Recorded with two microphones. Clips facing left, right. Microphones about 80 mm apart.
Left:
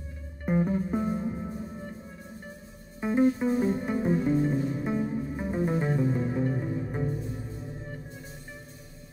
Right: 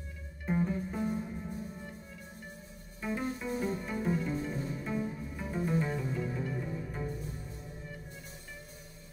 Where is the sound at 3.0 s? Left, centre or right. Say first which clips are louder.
Left 11 dB; left.